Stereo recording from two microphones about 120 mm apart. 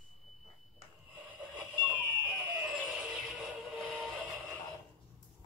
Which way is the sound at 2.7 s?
5° right (ahead or behind).